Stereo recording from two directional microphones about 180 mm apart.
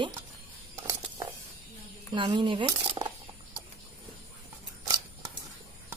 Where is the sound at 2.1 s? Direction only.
25° right (ahead or behind).